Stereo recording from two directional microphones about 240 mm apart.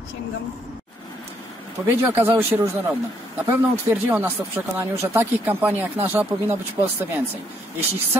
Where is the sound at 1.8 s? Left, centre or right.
Centre.